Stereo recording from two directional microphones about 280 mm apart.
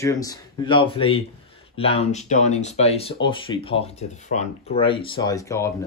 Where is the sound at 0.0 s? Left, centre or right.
Centre.